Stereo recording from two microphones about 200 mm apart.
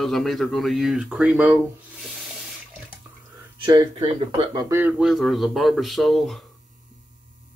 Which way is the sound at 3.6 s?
20° right (ahead or behind).